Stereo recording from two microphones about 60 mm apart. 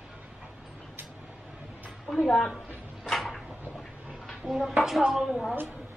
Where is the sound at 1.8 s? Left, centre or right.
Centre.